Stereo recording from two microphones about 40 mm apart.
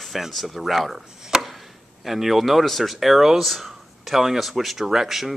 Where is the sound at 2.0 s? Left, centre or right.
Centre.